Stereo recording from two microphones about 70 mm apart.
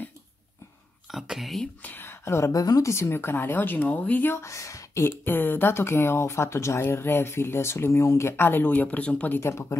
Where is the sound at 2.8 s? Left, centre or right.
Left.